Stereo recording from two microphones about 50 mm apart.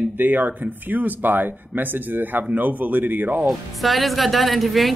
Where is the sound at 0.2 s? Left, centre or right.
Right.